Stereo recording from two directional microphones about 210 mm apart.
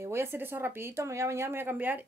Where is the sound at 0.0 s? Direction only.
10° right (ahead or behind).